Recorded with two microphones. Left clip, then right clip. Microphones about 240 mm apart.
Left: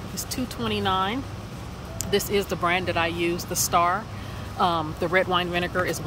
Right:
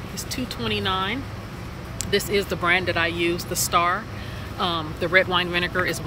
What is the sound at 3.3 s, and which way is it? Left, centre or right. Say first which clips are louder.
Speech: right 1 dB; left.